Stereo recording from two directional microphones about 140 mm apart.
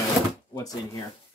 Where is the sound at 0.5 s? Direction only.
25° left (ahead or behind).